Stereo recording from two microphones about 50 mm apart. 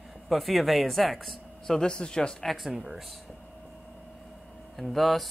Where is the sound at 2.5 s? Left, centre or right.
Centre.